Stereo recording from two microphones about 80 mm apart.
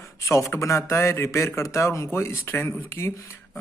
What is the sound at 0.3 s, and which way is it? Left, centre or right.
A man's voice, left.